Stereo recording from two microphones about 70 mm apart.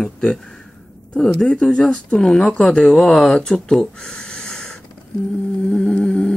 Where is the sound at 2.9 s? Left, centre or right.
Centre.